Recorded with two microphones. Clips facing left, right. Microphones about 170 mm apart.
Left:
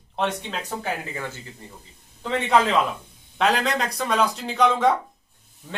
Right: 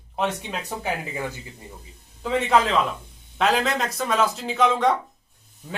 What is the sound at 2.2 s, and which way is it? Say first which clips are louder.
Speech: even; centre (ahead or behind).